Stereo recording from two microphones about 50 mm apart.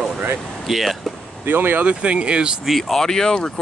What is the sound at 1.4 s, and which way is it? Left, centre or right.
Speech, right.